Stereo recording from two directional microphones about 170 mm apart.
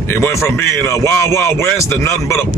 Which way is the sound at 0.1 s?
15° left (ahead or behind).